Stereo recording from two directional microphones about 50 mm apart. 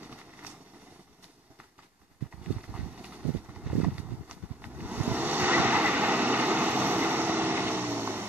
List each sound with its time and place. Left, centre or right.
0.0 s vehicle: right
2.7 s clip-clop: right